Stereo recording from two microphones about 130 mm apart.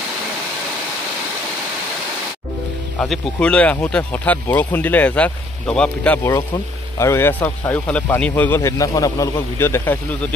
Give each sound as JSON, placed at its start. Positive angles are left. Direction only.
{"t": 3.0, "sound": "speech", "side_deg": 10}
{"t": 7.0, "sound": "speech", "side_deg": 20}